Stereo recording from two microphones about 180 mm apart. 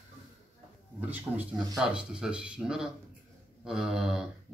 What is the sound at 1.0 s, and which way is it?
Speech, 10° right (ahead or behind).